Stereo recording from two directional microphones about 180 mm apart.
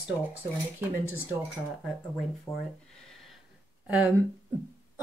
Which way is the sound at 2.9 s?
Centre (ahead or behind).